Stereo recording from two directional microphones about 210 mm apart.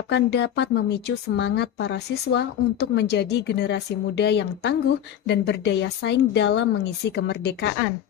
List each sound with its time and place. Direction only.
0.1 s a woman's voice: 55° left (ahead or behind)